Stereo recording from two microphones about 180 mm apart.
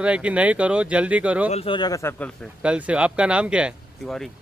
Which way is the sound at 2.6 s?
5° right (ahead or behind).